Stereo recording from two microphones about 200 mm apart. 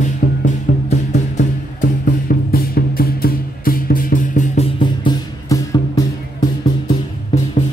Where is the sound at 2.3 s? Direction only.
50° left (ahead or behind).